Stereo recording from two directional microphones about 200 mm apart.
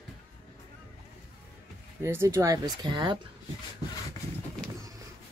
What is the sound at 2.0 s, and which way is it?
Speech, 15° right (ahead or behind).